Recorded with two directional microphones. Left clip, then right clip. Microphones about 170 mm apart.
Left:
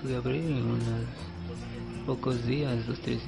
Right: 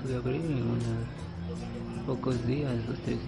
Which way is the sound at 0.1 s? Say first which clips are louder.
Left 1 dB; 40° left (ahead or behind).